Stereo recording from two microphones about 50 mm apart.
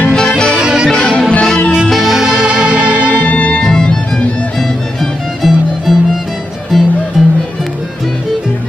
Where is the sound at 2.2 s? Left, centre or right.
Centre.